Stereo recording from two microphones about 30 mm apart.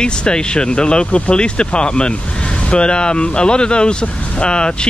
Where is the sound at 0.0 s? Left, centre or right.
Left.